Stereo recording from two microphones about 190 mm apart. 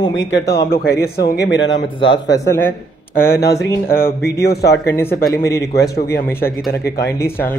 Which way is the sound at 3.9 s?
50° left (ahead or behind).